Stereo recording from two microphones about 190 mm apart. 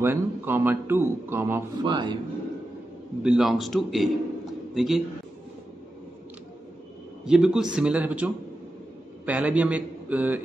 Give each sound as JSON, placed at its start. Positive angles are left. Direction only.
{"t": 0.0, "sound": "a man's voice", "side_deg": -10}
{"t": 1.9, "sound": "speech", "side_deg": -25}
{"t": 3.2, "sound": "a man's voice", "side_deg": -5}
{"t": 7.2, "sound": "a man's voice", "side_deg": -5}